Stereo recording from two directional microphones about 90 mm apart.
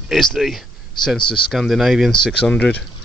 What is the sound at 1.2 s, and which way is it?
Speech, 65° left (ahead or behind).